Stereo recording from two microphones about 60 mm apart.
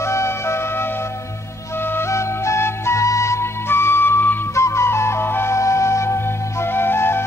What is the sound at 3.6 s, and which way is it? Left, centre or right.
Music, left.